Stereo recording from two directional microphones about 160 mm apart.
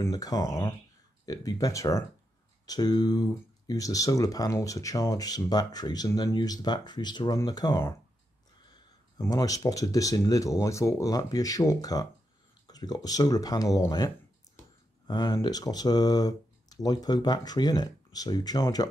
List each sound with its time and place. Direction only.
0.0 s speech: 20° left (ahead or behind)
9.2 s speech: 20° left (ahead or behind)